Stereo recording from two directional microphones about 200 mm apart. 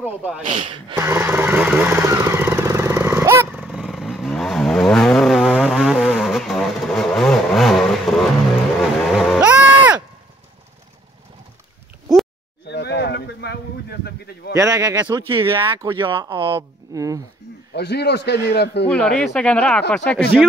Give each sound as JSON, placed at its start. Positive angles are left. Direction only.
{"t": 0.0, "sound": "speech", "side_deg": -10}
{"t": 0.5, "sound": "speech", "side_deg": -25}
{"t": 1.0, "sound": "vehicle", "side_deg": -10}
{"t": 9.1, "sound": "music", "side_deg": 0}
{"t": 12.6, "sound": "a sound", "side_deg": 60}
{"t": 14.5, "sound": "speech", "side_deg": -15}
{"t": 17.7, "sound": "a man's voice", "side_deg": 55}
{"t": 18.9, "sound": "speech", "side_deg": 5}